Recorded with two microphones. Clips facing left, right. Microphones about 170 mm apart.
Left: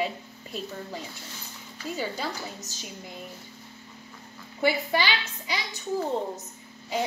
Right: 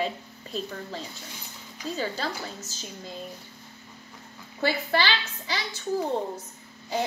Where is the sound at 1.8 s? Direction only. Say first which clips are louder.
Right 1 dB; 15° right (ahead or behind).